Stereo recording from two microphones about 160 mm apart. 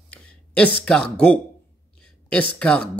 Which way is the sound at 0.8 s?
5° left (ahead or behind).